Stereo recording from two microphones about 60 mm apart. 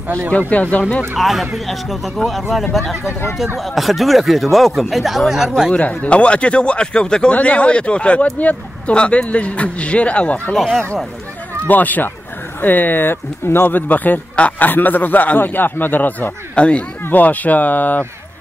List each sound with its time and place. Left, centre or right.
0.5 s speech: left
1.1 s speech: centre
3.1 s speech: left
3.5 s speech: centre
5.7 s speech: left
10.5 s speech: centre
11.6 s speech: left